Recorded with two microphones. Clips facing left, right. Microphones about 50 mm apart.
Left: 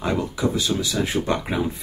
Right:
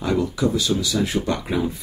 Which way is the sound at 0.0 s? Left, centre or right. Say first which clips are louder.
Right 2 dB; left.